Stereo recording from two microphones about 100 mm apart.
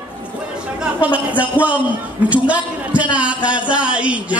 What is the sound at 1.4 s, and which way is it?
A man's voice, 15° right (ahead or behind).